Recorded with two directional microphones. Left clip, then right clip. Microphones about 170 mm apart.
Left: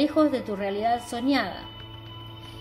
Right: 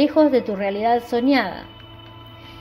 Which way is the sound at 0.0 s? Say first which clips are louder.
Right 7 dB; 20° right (ahead or behind).